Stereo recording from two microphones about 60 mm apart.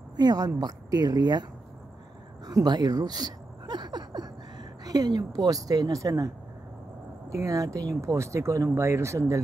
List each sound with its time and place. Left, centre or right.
0.2 s a woman's voice: right
2.4 s a woman's voice: right
4.8 s a woman's voice: right
8.6 s speech: right